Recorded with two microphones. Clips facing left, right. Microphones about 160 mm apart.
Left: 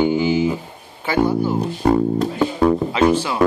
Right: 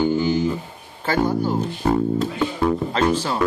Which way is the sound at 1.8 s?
65° left (ahead or behind).